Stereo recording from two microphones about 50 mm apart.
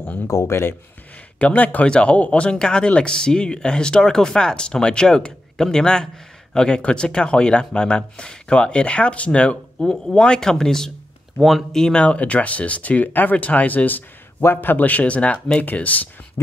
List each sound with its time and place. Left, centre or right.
0.3 s speech: left
1.4 s a man's voice: left; by 12.0 s centre
12.0 s a man's voice: left